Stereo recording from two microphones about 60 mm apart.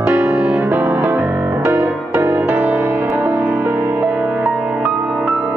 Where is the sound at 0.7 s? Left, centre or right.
Right.